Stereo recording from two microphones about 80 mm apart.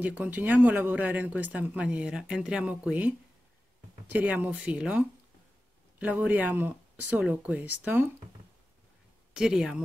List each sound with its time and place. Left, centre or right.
0.0 s speech: centre
4.1 s speech: right
9.3 s speech: centre